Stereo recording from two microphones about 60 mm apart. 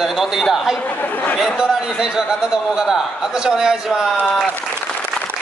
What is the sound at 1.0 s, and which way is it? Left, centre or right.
Speech, left.